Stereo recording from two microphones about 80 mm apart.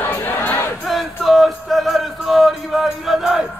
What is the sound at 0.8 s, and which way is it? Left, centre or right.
Music, centre.